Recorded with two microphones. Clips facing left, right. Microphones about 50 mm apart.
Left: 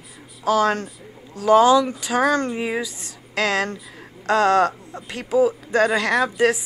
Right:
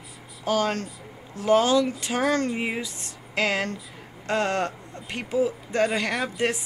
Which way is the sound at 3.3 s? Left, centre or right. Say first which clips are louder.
Left 3 dB; left.